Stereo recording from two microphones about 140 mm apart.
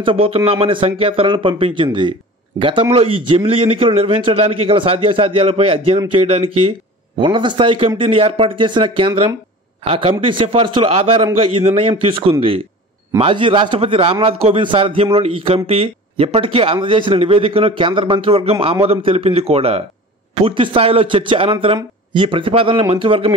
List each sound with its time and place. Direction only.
0.0 s a man's voice: 40° right (ahead or behind)